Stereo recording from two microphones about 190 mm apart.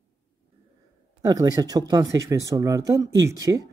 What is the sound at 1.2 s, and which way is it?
Speech, 20° right (ahead or behind).